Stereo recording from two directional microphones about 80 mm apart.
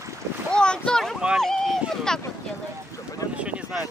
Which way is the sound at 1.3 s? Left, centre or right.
Centre.